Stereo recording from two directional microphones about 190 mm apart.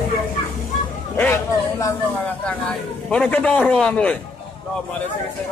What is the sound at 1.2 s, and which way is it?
Speech, 15° left (ahead or behind).